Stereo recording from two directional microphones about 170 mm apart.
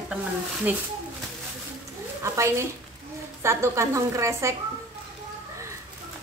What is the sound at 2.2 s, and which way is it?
A woman's voice, 15° right (ahead or behind).